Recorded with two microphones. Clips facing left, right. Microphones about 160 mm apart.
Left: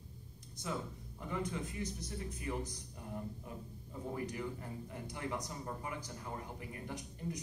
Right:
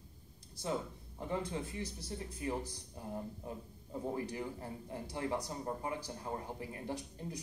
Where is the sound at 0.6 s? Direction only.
30° right (ahead or behind).